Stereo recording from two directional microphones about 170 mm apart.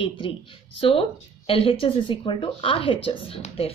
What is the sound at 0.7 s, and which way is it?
A woman's voice, 35° left (ahead or behind).